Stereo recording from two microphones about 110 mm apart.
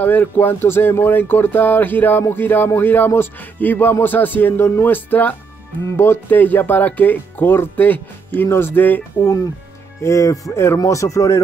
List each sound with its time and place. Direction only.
0.0 s speech: 15° left (ahead or behind)
10.0 s speech: 30° left (ahead or behind)